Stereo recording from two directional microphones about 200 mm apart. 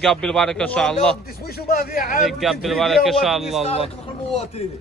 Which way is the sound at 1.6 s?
45° left (ahead or behind).